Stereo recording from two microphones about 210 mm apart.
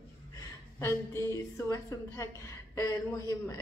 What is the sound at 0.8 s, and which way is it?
A woman's voice, 15° left (ahead or behind).